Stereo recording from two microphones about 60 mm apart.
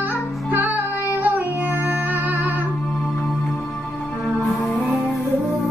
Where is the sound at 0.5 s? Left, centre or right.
Right.